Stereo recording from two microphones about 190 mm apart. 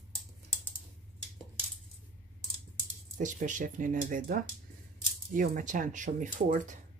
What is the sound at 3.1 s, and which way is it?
Speech, 40° right (ahead or behind).